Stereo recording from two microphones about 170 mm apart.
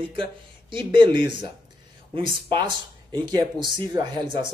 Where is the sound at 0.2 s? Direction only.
30° right (ahead or behind).